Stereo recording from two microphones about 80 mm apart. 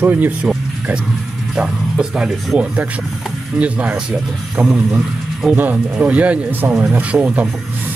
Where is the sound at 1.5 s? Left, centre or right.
Centre.